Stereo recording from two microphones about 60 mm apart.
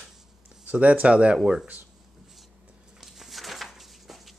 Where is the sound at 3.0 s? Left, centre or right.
Centre.